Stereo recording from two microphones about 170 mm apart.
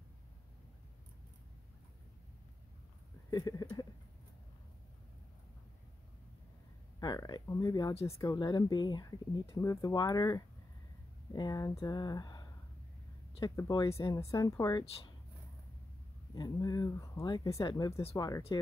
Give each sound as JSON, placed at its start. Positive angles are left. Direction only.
{"t": 3.3, "sound": "a sound", "side_deg": 25}
{"t": 7.0, "sound": "speech", "side_deg": 25}
{"t": 16.3, "sound": "speech", "side_deg": 20}